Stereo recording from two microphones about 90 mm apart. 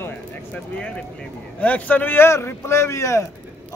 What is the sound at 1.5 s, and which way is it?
A man's voice, 15° left (ahead or behind).